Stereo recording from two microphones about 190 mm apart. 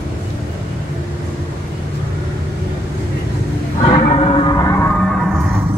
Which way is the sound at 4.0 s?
35° left (ahead or behind).